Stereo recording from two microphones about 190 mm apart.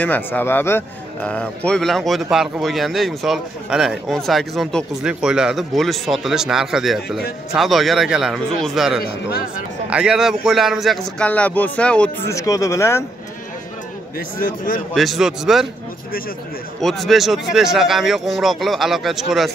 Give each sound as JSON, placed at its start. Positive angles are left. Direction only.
{"t": 0.0, "sound": "speech", "side_deg": 10}
{"t": 12.4, "sound": "speech", "side_deg": 15}
{"t": 14.4, "sound": "speech", "side_deg": 50}
{"t": 15.0, "sound": "speech", "side_deg": 0}
{"t": 16.8, "sound": "speech", "side_deg": 0}